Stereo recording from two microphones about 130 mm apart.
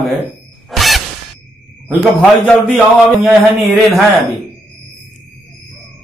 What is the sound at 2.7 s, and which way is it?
Speech, 5° left (ahead or behind).